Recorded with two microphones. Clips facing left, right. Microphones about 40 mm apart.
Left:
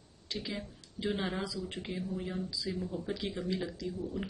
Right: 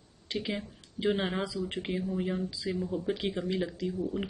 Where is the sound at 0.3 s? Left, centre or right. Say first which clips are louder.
Right 5 dB; right.